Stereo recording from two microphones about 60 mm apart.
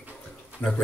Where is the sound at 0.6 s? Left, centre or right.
Left.